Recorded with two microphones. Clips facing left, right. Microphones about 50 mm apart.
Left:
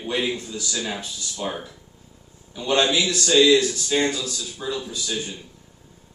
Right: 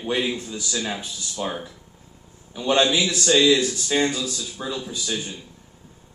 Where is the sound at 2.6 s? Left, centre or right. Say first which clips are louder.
Right 1 dB; right.